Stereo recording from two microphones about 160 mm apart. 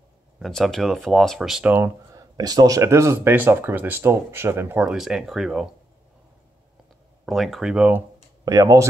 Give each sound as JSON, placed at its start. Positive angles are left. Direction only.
{"t": 0.4, "sound": "speech", "side_deg": 0}
{"t": 7.2, "sound": "speech", "side_deg": 0}
{"t": 8.5, "sound": "speech", "side_deg": -20}